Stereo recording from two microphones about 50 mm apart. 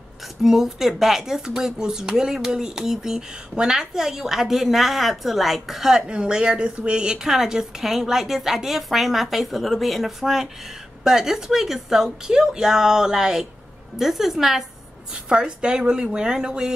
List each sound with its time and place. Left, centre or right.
0.4 s a woman's voice: centre
6.0 s a woman's voice: centre
15.2 s a woman's voice: centre